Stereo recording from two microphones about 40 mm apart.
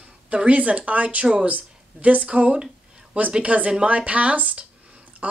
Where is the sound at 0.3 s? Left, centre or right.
Right.